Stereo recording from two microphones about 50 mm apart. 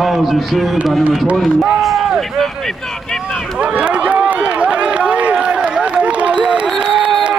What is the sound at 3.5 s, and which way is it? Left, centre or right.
Run, right.